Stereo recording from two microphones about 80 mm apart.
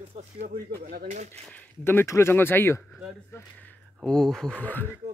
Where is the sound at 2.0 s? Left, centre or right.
Left.